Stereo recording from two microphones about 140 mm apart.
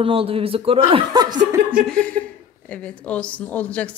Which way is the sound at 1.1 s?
30° right (ahead or behind).